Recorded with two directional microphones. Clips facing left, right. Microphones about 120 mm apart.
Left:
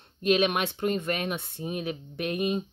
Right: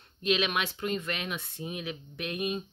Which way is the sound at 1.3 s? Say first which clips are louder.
Left 3 dB; 30° left (ahead or behind).